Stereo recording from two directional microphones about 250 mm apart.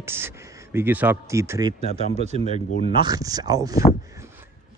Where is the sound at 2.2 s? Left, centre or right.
Right.